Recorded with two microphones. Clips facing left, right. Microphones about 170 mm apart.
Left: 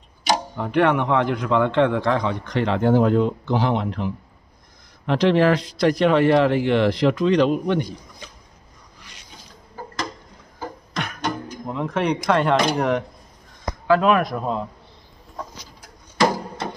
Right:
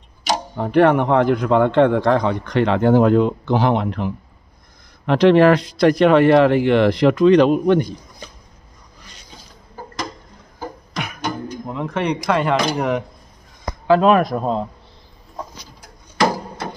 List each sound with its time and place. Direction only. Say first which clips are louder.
0.6 s a man's voice: right 6 dB; 40° right (ahead or behind); by 7.8 s 55° right (ahead or behind)
10.6 s a sound: right 1 dB; 5° right (ahead or behind)
13.8 s speech: right 4 dB; 30° right (ahead or behind)